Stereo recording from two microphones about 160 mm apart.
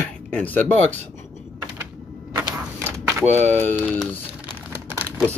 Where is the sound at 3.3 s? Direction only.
45° right (ahead or behind).